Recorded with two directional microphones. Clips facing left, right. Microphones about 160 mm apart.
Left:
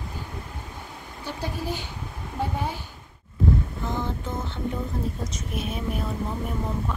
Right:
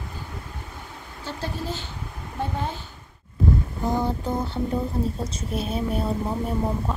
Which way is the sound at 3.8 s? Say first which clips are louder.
Right 5 dB; 35° right (ahead or behind).